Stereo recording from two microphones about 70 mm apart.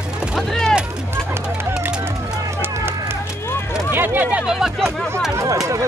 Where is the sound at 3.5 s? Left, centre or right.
Left.